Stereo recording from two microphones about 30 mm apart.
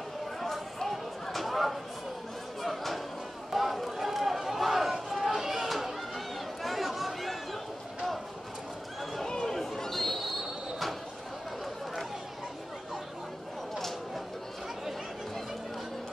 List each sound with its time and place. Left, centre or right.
0.7 s a sound: centre
3.5 s run: centre
5.7 s chatter: centre
9.3 s chatter: centre
9.8 s basketball bounce: centre
13.7 s a sound: centre